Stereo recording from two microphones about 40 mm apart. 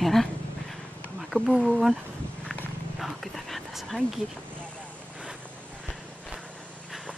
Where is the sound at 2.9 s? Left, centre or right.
Centre.